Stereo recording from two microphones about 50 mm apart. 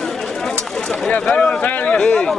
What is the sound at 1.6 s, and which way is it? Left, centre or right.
Speech, left.